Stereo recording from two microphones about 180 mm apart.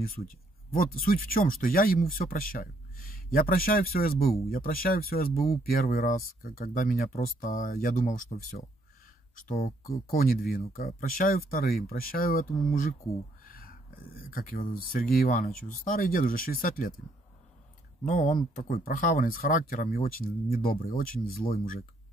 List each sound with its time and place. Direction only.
0.0 s speech: 55° left (ahead or behind)
9.5 s speech: 55° left (ahead or behind)
18.0 s speech: 45° left (ahead or behind)